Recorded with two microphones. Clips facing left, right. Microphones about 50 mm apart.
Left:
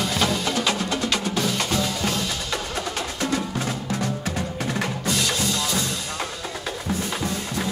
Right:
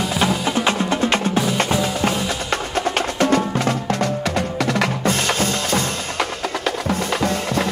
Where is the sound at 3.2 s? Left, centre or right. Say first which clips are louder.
Right 8 dB; right.